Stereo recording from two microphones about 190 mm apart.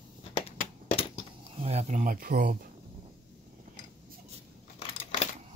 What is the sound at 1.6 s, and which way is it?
Speech, 35° right (ahead or behind).